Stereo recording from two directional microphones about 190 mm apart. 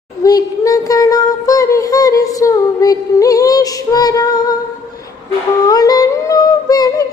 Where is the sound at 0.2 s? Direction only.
20° left (ahead or behind).